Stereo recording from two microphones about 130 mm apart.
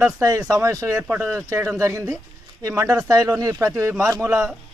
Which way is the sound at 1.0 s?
10° right (ahead or behind).